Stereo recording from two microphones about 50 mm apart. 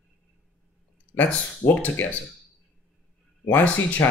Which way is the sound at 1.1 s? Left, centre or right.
Left.